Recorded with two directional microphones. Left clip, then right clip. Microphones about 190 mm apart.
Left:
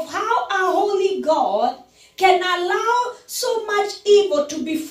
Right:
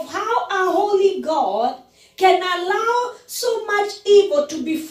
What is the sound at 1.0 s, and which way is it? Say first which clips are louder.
A man's voice: even; 30° left (ahead or behind).